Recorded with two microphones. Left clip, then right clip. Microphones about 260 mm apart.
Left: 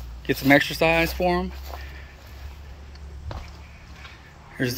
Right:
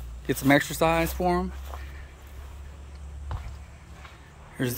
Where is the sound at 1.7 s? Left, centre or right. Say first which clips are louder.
Left 4 dB; left.